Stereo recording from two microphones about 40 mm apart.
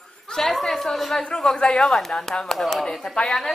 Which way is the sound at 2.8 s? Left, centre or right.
Centre.